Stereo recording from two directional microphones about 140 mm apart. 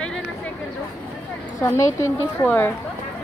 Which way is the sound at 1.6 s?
20° left (ahead or behind).